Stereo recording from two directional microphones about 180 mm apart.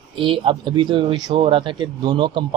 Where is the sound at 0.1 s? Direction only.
30° right (ahead or behind).